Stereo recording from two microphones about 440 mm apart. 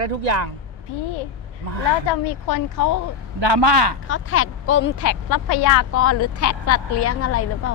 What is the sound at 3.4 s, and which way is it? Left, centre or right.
Speech, right.